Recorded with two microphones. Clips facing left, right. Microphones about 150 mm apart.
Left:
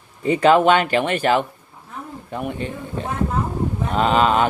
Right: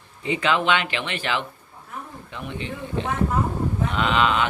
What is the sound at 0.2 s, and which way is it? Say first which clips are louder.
Speech: left 8 dB; 45° left (ahead or behind).